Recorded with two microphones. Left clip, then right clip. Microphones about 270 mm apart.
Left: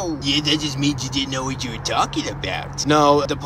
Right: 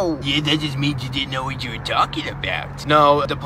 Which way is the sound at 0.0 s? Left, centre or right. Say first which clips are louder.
Right 1 dB; centre.